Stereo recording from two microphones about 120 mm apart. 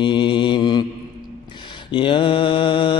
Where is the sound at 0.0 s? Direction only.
40° left (ahead or behind).